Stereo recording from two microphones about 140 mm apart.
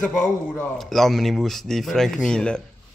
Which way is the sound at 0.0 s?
5° left (ahead or behind).